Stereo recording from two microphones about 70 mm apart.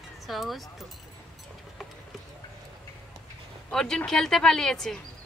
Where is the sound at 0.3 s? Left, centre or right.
Centre.